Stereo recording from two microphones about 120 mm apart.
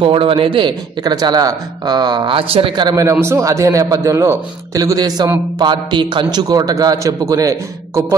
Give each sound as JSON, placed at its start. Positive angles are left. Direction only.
{"t": 0.0, "sound": "a man's voice", "side_deg": -45}